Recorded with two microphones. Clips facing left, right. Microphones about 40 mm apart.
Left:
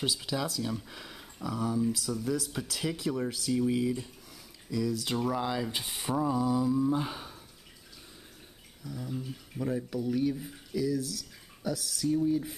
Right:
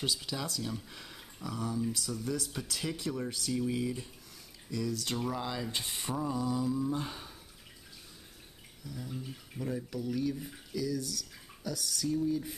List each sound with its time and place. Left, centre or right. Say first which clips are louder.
0.2 s speech: left 5 dB; centre
8.8 s speech: left 4 dB; centre
12.1 s a sound: left 4 dB; left